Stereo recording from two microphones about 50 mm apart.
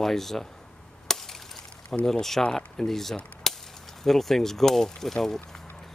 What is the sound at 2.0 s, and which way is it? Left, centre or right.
Speech, centre.